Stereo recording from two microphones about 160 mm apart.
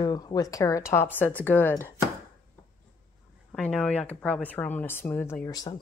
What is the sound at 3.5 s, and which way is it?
Speech, 5° left (ahead or behind).